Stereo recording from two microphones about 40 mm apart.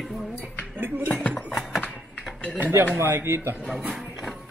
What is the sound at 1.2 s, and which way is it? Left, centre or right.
Speech, left.